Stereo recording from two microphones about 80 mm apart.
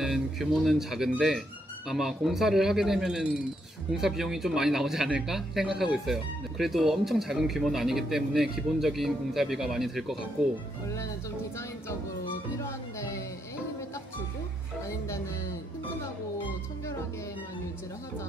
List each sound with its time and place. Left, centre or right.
0.0 s speech: centre
12.5 s music: left